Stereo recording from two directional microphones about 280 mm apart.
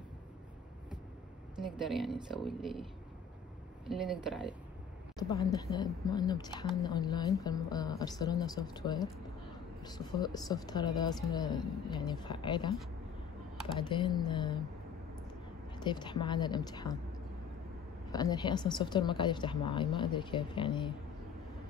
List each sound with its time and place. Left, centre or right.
1.9 s speech: centre
5.1 s a woman's voice: centre
13.7 s a woman's voice: centre
15.8 s a woman's voice: centre
18.1 s a woman's voice: centre